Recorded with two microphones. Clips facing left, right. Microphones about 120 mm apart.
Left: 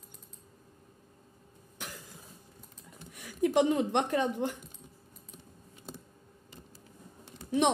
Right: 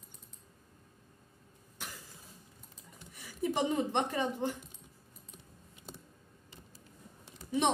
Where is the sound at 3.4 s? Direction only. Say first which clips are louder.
Left 5 dB; 65° left (ahead or behind).